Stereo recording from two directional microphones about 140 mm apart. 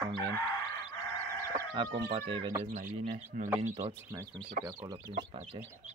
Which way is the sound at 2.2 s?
40° right (ahead or behind).